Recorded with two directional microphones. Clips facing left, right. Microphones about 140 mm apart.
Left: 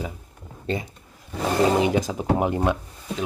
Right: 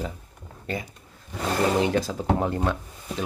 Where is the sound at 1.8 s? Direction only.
15° left (ahead or behind).